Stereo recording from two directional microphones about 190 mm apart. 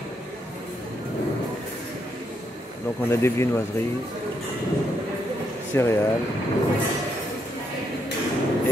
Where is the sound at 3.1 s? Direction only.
15° left (ahead or behind).